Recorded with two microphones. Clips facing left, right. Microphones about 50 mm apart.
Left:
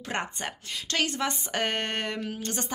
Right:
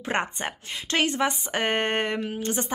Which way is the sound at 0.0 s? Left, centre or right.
Right.